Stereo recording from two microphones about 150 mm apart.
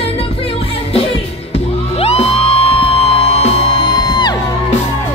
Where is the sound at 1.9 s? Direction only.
40° left (ahead or behind).